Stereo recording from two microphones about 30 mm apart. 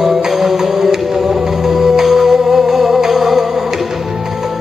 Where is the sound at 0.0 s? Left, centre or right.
Centre.